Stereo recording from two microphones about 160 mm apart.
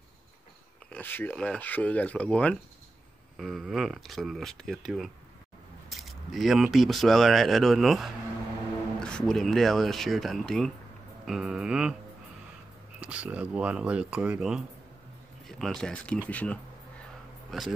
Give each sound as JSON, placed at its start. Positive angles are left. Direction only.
{"t": 0.8, "sound": "speech", "side_deg": 10}
{"t": 13.0, "sound": "speech", "side_deg": -10}